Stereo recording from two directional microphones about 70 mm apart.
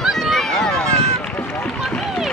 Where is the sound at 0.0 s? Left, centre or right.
Centre.